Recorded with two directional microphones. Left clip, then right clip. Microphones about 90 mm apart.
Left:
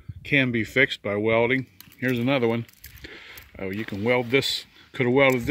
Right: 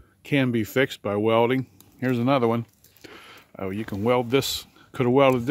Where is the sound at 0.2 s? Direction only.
30° right (ahead or behind).